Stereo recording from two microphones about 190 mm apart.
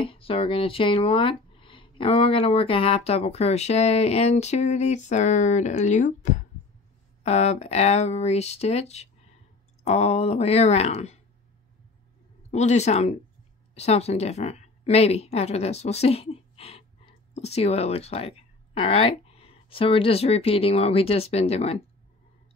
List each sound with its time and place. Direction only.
0.0 s speech: 30° left (ahead or behind)
12.4 s a woman's voice: 35° left (ahead or behind)